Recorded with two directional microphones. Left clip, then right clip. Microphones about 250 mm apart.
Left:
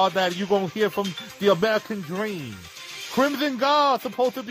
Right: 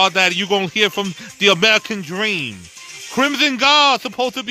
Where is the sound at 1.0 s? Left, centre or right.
Right.